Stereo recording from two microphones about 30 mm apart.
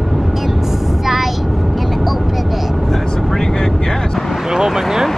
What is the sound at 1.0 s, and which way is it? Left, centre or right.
Vehicle, centre.